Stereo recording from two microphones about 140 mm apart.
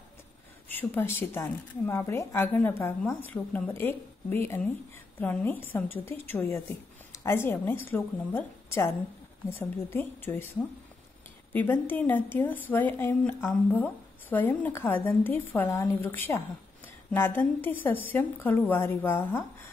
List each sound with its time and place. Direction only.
0.7 s a woman's voice: 15° left (ahead or behind)
11.5 s a woman's voice: 15° left (ahead or behind)